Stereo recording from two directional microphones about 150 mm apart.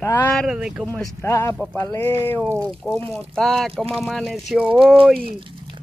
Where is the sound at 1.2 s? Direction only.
20° left (ahead or behind).